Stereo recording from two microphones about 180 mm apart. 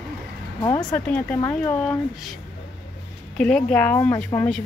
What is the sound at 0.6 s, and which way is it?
Speech, 20° left (ahead or behind).